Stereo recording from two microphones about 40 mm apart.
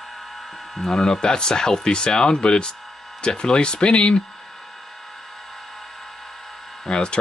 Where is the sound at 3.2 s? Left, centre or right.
Left.